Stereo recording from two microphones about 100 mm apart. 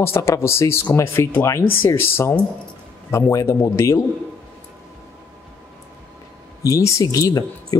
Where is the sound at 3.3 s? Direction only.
35° left (ahead or behind).